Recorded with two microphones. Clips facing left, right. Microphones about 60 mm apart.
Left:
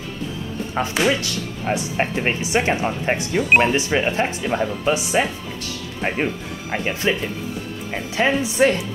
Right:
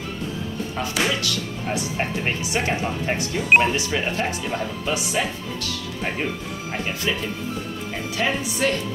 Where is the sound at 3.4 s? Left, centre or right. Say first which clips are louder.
Even; centre.